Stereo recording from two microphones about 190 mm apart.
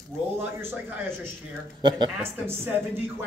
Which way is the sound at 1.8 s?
25° right (ahead or behind).